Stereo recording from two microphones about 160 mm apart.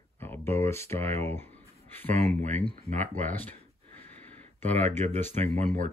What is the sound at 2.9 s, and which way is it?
Speech, 10° left (ahead or behind).